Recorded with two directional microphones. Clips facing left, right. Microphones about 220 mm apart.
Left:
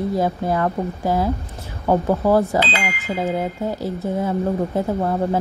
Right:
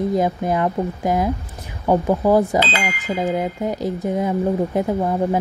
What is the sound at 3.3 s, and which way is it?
A woman's voice, 15° right (ahead or behind).